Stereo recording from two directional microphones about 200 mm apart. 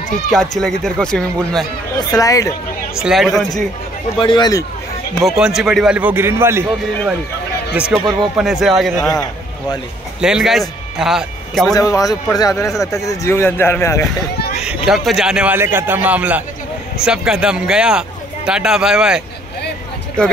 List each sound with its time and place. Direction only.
0.3 s speech: centre (ahead or behind)
2.0 s speech: 15° left (ahead or behind)
3.0 s speech: centre (ahead or behind)
4.2 s speech: 20° left (ahead or behind)
5.4 s a man's voice: centre (ahead or behind)
8.0 s speech: 20° right (ahead or behind)
8.4 s speech: 5° right (ahead or behind)
10.2 s speech: centre (ahead or behind)
11.7 s speech: 15° left (ahead or behind)
12.5 s speech: centre (ahead or behind)
12.8 s speech: 15° left (ahead or behind)
14.9 s a man's voice: centre (ahead or behind)